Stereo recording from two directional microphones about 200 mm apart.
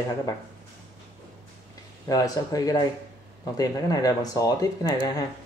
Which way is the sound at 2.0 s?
20° left (ahead or behind).